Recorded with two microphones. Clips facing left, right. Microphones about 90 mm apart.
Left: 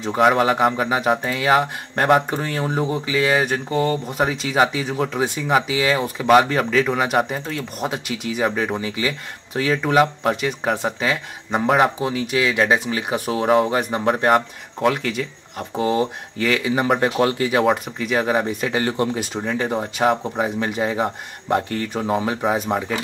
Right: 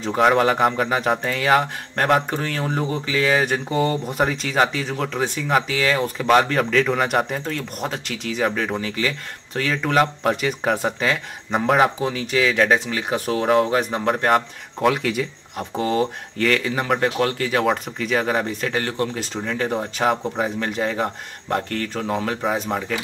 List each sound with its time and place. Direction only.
0.0 s speech: centre (ahead or behind)
17.6 s speech: 5° left (ahead or behind)